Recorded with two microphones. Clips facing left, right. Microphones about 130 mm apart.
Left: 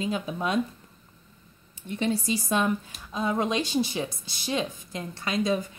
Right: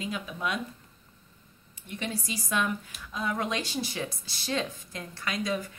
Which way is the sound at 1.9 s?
30° left (ahead or behind).